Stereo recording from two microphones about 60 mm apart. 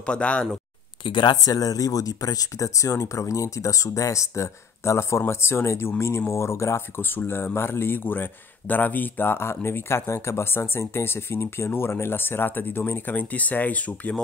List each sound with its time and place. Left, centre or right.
0.0 s speech: centre
1.3 s speech: left
7.0 s speech: left